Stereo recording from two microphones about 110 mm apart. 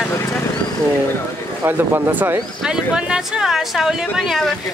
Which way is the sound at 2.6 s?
5° right (ahead or behind).